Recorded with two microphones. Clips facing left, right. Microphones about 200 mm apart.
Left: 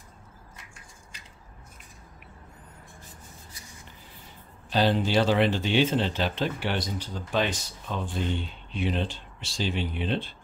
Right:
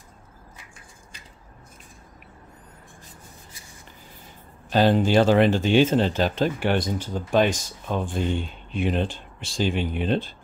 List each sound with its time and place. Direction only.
4.6 s speech: 50° right (ahead or behind)